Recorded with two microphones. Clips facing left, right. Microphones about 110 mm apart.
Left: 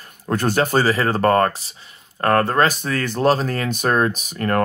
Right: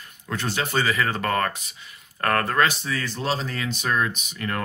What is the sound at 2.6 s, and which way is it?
Speech, 50° left (ahead or behind).